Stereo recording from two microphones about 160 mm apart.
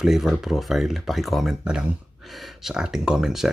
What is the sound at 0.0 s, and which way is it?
Speech, 5° right (ahead or behind).